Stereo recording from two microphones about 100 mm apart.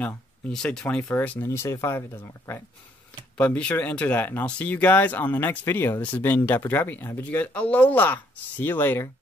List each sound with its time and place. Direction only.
0.5 s speech: 5° left (ahead or behind); by 2.6 s 25° left (ahead or behind)
3.3 s speech: 15° left (ahead or behind)